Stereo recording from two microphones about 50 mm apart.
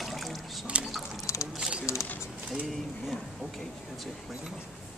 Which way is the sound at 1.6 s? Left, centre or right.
Centre.